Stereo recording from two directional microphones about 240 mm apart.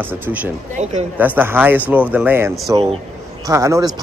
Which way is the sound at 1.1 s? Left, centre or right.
Centre.